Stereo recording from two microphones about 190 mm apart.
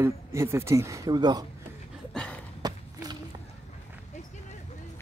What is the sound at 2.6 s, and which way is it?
Run, 20° right (ahead or behind).